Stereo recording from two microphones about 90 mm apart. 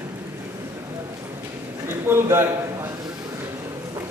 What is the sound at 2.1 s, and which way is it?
Speech, 30° right (ahead or behind).